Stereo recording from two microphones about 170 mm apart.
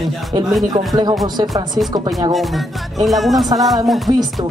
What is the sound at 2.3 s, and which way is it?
Speech, centre (ahead or behind).